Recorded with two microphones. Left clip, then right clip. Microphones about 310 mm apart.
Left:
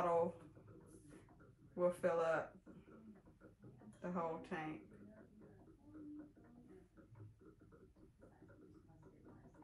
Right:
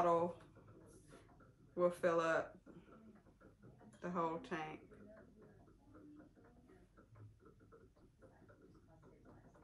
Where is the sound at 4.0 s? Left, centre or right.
Centre.